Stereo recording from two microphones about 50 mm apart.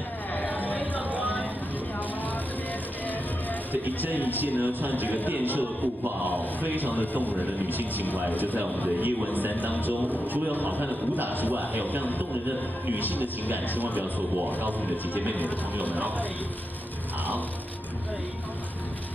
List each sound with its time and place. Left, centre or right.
0.3 s a sound: left
0.9 s vehicle: right
3.7 s a man's voice: right
15.8 s a man's voice: right